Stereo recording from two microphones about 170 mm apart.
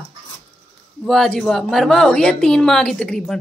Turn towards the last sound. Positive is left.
turn(degrees=5)  # may be behind; listen again after turning